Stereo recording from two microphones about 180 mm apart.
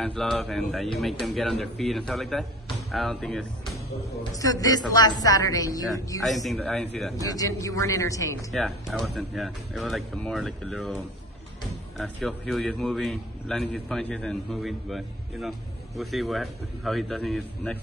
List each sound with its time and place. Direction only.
0.0 s a man's voice: centre (ahead or behind)
4.2 s a woman's voice: 20° left (ahead or behind)
6.2 s a man's voice: centre (ahead or behind)
7.2 s a man's voice: 20° left (ahead or behind)
8.5 s a man's voice: centre (ahead or behind)